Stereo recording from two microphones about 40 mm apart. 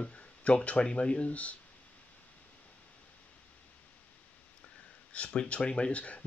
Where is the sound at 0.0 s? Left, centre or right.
Left.